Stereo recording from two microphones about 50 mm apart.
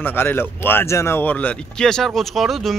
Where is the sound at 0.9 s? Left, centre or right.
Left.